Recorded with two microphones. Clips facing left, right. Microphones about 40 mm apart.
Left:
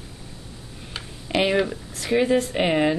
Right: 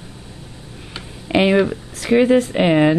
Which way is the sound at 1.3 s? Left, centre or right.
Right.